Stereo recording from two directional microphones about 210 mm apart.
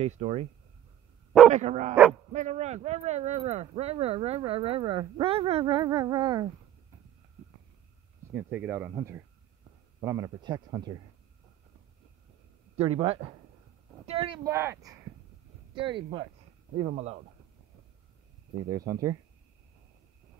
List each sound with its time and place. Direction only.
0.0 s speech: 30° right (ahead or behind)
1.5 s speech: 35° right (ahead or behind)
8.3 s speech: 10° right (ahead or behind)
12.7 s speech: 30° right (ahead or behind); by 14.8 s 10° right (ahead or behind)
15.7 s speech: 25° right (ahead or behind)
18.7 s speech: 15° right (ahead or behind)